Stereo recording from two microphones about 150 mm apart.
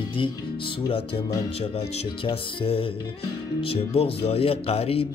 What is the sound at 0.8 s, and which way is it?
Speech, 40° left (ahead or behind).